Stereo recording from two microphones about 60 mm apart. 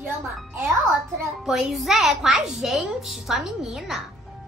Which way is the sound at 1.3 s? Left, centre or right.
Centre.